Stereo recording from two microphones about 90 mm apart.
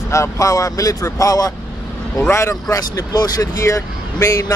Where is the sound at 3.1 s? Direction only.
45° left (ahead or behind).